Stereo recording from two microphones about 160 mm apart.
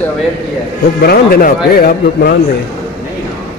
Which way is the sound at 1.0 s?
70° left (ahead or behind).